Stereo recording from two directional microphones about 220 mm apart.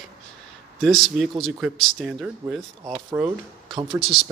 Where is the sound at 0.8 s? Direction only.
Centre (ahead or behind).